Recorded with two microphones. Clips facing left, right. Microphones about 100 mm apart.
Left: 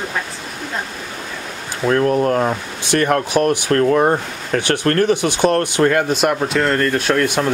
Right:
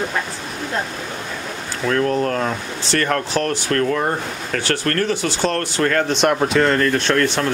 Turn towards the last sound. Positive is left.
turn(degrees=10)  # may be behind; listen again after turning